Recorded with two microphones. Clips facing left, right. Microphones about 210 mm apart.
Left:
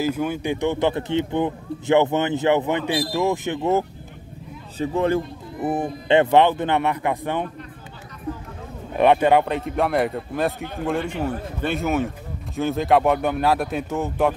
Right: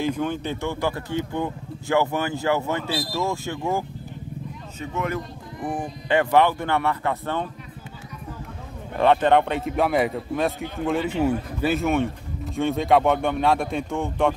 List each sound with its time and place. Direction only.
0.0 s a man's voice: 10° left (ahead or behind)
4.7 s speech: 30° left (ahead or behind)
5.6 s speech: 5° left (ahead or behind)
6.0 s a man's voice: 20° left (ahead or behind)
8.9 s speech: 15° left (ahead or behind)